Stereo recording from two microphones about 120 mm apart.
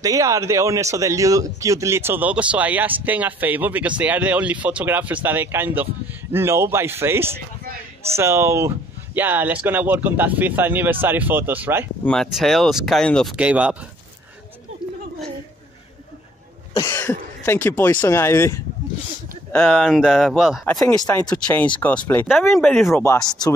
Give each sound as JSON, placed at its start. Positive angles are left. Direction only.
{"t": 0.0, "sound": "speech", "side_deg": -30}
{"t": 12.0, "sound": "speech", "side_deg": 5}
{"t": 13.4, "sound": "speech", "side_deg": -10}
{"t": 16.7, "sound": "speech", "side_deg": 20}
{"t": 19.6, "sound": "speech", "side_deg": 0}
{"t": 21.3, "sound": "speech", "side_deg": 10}
{"t": 22.5, "sound": "speech", "side_deg": 0}